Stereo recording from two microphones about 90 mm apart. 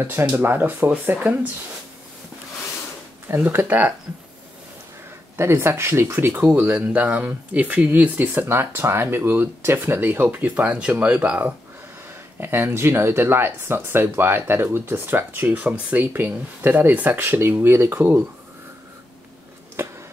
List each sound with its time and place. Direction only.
0.0 s speech: 25° right (ahead or behind)
3.3 s speech: 30° right (ahead or behind)
5.4 s speech: 30° right (ahead or behind)
19.8 s a sound: 30° right (ahead or behind)